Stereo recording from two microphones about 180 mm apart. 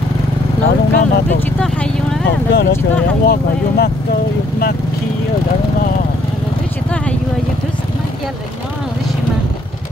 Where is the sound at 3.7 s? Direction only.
60° left (ahead or behind).